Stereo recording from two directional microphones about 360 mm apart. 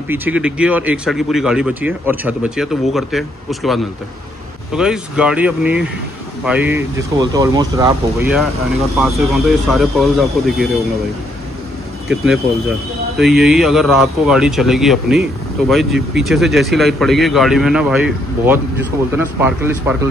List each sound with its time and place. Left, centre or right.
0.1 s speech: centre
13.2 s speech: centre